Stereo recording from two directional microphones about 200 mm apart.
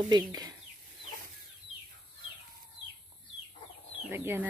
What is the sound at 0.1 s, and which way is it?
Speech, 20° right (ahead or behind).